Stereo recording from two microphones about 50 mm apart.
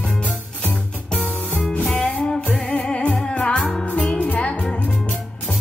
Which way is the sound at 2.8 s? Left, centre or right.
Centre.